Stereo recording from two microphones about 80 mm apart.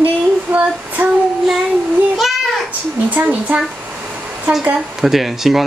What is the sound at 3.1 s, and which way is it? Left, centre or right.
Speech, right.